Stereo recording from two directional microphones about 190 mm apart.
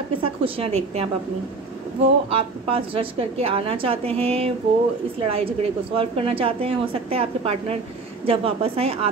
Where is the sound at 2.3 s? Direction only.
30° right (ahead or behind).